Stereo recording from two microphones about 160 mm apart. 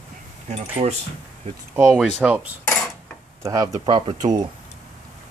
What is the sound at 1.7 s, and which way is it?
Cutlery, 10° right (ahead or behind).